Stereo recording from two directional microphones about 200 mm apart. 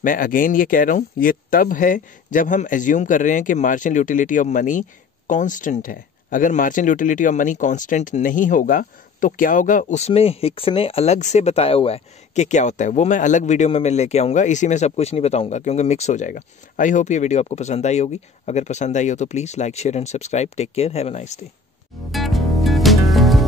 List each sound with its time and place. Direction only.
0.0 s speech: 45° left (ahead or behind)
22.1 s music: centre (ahead or behind)